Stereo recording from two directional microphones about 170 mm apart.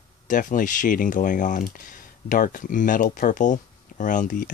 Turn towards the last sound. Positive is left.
turn(degrees=50)  # may be behind; listen again after turning